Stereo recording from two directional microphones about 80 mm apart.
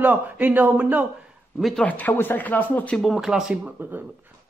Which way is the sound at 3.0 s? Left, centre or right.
Centre.